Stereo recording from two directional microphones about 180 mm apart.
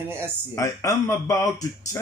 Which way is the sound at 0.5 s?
20° left (ahead or behind).